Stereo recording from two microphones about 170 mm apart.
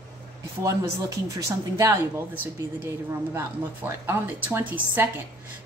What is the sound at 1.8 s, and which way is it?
A woman's voice, 15° right (ahead or behind).